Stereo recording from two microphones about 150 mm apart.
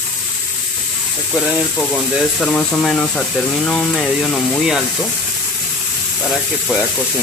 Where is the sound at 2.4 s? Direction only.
5° left (ahead or behind).